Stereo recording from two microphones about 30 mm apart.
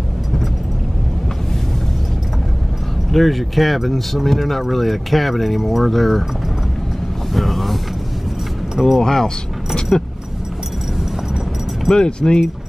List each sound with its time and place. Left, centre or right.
3.1 s speech: centre
5.9 s speech: centre
7.3 s vehicle: centre
8.7 s speech: centre
9.0 s speech: centre
11.9 s speech: left